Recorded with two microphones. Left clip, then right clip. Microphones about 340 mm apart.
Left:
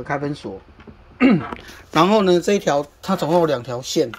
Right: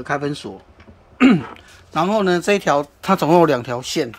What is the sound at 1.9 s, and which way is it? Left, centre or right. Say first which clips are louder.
Speech: left 3 dB; centre.